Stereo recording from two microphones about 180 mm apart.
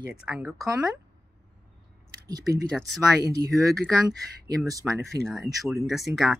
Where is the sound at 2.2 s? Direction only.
20° right (ahead or behind).